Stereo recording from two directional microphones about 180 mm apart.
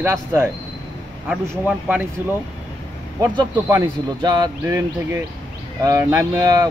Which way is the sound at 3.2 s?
20° right (ahead or behind).